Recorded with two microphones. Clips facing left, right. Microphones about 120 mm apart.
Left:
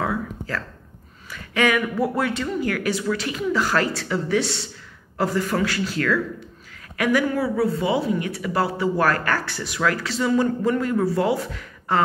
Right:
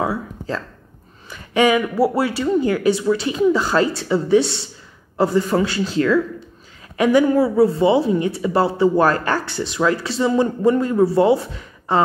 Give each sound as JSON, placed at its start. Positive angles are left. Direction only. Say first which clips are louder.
{"t": 1.3, "sound": "speech", "louder": "right 5 dB", "side_deg": -20}
{"t": 2.0, "sound": "speech", "louder": "right 5 dB", "side_deg": -30}